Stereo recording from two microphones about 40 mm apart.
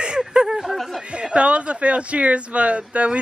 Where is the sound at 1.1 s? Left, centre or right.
Right.